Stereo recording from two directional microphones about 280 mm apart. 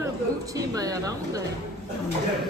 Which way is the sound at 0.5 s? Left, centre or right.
Centre.